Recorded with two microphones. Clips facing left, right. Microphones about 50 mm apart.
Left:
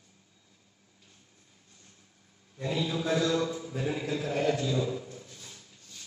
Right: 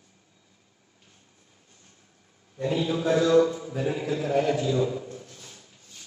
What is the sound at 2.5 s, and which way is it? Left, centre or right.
A man's voice, right.